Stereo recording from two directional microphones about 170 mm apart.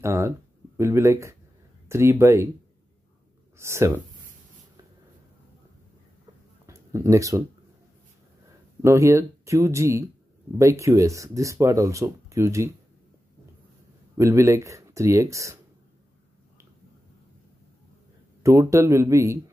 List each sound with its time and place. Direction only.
0.0 s speech: 15° right (ahead or behind)
3.5 s speech: 15° right (ahead or behind)
6.6 s a sound: 15° right (ahead or behind)
8.8 s speech: 15° right (ahead or behind)
14.1 s speech: 15° right (ahead or behind)
18.4 s speech: 15° right (ahead or behind)